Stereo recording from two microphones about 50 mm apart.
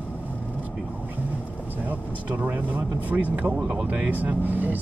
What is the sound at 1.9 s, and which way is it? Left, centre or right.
Speech, right.